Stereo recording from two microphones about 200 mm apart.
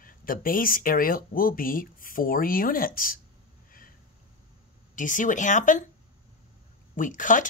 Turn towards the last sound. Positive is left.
turn(degrees=40)  # may be behind; listen again after turning